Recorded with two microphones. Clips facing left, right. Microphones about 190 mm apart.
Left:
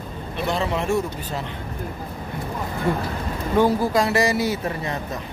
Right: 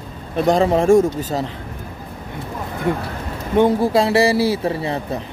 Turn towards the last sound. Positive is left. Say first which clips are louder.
# right 5 dB
turn(degrees=-30)  # may be behind; listen again after turning